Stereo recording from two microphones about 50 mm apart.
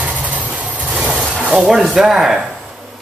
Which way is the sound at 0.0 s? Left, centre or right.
Right.